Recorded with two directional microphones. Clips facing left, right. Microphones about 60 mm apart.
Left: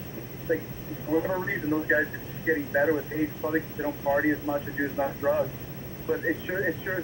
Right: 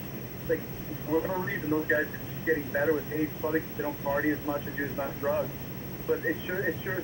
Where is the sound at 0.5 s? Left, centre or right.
Left.